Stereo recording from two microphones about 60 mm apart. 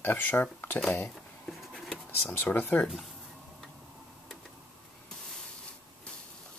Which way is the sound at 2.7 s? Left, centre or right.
Left.